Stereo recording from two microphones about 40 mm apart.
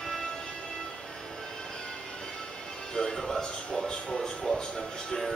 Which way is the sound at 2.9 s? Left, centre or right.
Centre.